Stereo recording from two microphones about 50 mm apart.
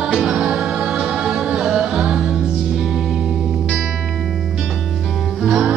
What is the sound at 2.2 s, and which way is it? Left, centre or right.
Music, centre.